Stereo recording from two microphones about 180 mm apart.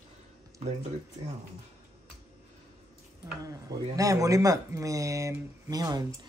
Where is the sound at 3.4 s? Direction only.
20° right (ahead or behind).